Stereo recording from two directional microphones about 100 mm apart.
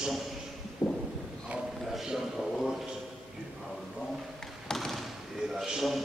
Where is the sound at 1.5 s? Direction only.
5° right (ahead or behind).